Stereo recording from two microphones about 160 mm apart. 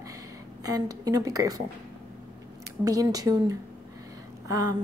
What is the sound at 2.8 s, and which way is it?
Speech, 25° right (ahead or behind).